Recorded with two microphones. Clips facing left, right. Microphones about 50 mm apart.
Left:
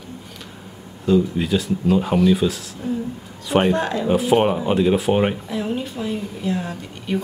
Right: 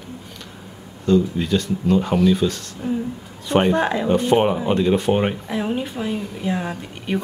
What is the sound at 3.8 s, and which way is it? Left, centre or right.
Speech, centre.